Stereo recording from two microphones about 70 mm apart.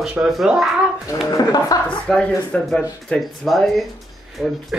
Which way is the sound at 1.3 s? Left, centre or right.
Left.